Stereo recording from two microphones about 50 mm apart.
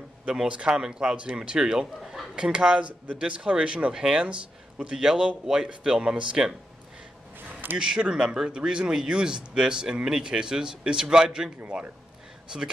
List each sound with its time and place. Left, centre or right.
0.3 s a man's voice: centre
7.7 s speech: centre